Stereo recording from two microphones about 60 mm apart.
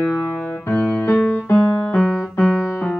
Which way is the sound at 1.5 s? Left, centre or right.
Left.